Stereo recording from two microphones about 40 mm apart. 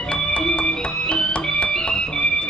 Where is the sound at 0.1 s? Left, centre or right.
Left.